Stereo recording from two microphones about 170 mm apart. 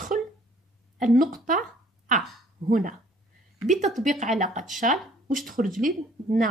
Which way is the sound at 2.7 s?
50° right (ahead or behind).